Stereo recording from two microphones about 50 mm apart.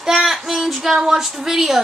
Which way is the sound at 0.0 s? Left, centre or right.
Centre.